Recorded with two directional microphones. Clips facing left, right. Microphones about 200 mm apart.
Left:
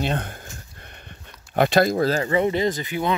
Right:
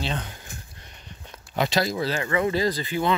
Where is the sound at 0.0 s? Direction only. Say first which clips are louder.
Left 5 dB; 55° left (ahead or behind).